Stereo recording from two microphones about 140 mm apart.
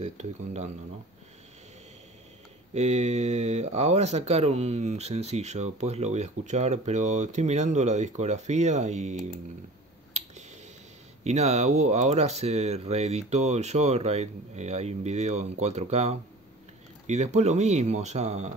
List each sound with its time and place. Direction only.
0.0 s speech: 55° right (ahead or behind)
2.7 s speech: 55° right (ahead or behind)
11.2 s speech: 50° right (ahead or behind)